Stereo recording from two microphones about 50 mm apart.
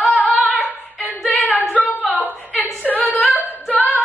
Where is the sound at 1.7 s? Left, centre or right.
Left.